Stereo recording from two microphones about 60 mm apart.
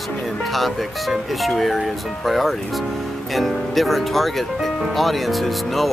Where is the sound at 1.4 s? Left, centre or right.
Centre.